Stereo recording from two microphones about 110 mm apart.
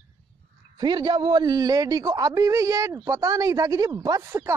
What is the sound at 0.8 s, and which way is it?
A man's voice, 45° right (ahead or behind).